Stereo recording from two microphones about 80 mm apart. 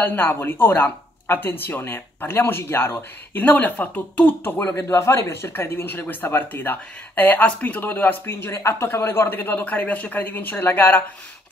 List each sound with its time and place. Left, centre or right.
0.0 s speech: left